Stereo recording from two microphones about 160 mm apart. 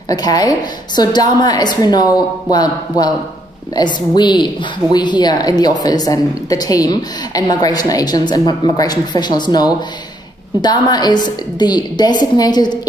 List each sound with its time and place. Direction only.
0.1 s a woman's voice: 25° left (ahead or behind)